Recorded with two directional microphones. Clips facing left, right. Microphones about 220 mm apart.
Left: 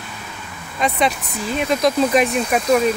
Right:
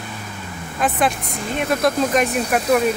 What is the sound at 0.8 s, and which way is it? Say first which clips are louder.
Speech: even; 5° right (ahead or behind).